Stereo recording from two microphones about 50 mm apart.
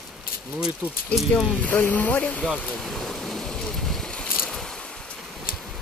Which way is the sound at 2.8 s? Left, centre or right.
Centre.